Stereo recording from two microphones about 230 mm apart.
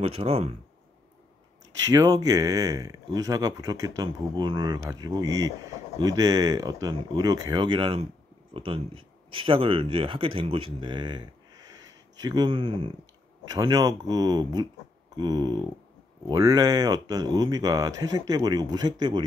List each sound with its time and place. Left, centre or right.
0.0 s speech: right
1.9 s speech: centre